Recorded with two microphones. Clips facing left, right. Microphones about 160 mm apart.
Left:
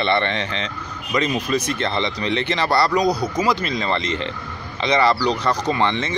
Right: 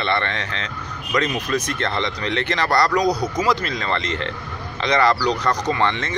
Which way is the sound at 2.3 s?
25° left (ahead or behind).